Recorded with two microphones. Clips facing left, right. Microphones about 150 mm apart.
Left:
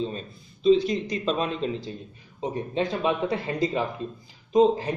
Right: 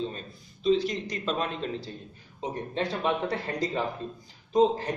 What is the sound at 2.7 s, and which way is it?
A man's voice, 15° left (ahead or behind).